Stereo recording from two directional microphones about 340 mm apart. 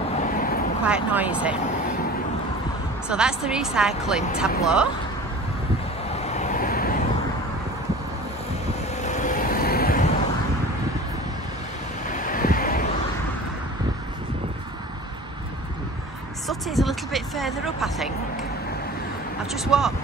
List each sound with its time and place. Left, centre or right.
0.2 s vehicle: left
0.8 s a woman's voice: centre
3.1 s a woman's voice: centre
6.2 s vehicle: centre
9.0 s vehicle: left
12.1 s vehicle: left
16.4 s a sound: centre
19.5 s a woman's voice: centre